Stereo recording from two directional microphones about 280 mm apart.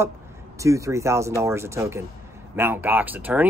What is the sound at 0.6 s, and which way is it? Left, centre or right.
Speech, centre.